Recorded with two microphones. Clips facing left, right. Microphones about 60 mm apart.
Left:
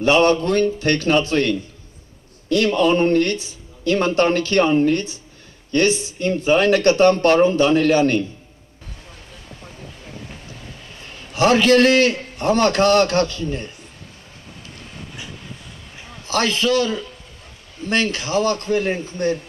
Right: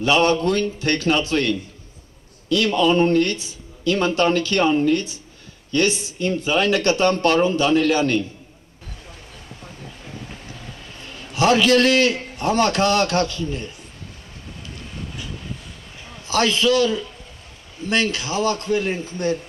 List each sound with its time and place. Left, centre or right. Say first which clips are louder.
0.0 s speech: left 2 dB; left
2.5 s speech: left 1 dB; left
11.3 s speech: left 2 dB; left
16.3 s speech: right 1 dB; left